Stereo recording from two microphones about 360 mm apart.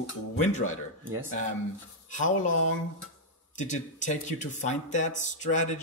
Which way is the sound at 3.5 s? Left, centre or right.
Centre.